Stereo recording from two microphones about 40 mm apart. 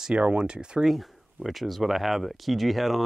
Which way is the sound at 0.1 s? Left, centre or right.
Right.